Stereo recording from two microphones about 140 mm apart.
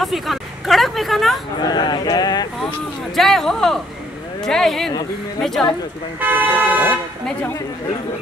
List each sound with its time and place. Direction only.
0.0 s speech: centre (ahead or behind)
1.6 s a sound: 30° left (ahead or behind)
3.2 s speech: centre (ahead or behind)
6.1 s speech: 10° right (ahead or behind)